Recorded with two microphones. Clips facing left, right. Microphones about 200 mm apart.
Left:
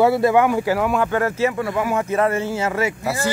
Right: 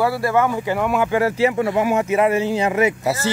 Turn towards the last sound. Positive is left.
turn(degrees=-20)  # may be behind; listen again after turning